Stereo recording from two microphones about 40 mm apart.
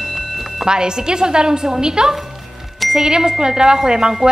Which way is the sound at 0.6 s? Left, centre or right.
Centre.